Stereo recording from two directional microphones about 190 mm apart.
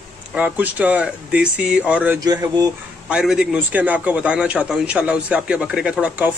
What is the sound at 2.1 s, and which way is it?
Speech, 20° right (ahead or behind).